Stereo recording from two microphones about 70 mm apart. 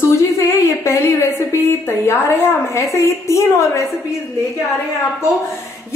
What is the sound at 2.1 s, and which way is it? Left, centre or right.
Speech, left.